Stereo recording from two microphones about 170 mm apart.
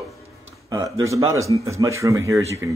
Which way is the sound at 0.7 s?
20° right (ahead or behind).